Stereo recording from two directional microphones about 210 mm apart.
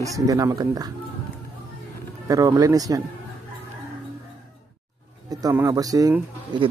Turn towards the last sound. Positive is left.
turn(degrees=-20)  # may be behind; listen again after turning